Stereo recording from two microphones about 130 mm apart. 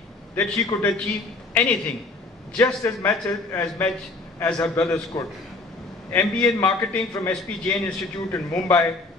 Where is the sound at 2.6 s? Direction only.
20° left (ahead or behind).